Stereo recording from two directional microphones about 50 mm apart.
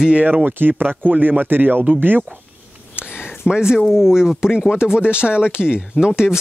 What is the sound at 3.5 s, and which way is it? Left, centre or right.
Speech, centre.